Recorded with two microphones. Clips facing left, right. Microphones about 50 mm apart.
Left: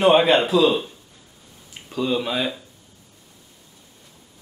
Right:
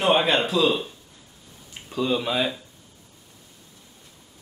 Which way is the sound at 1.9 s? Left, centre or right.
Centre.